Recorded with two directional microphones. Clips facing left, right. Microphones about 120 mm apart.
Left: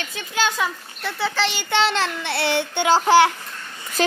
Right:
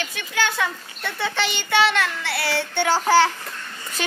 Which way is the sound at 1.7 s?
30° left (ahead or behind).